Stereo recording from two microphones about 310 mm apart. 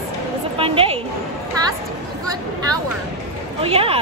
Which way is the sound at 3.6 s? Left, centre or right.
Centre.